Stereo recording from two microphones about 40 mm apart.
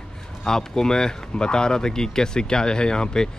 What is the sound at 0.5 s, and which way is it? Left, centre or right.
Speech, centre.